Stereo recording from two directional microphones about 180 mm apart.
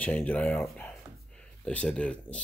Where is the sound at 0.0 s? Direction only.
10° left (ahead or behind).